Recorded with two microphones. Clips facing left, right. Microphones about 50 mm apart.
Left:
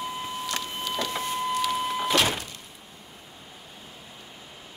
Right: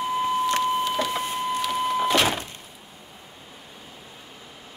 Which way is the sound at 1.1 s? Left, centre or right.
Centre.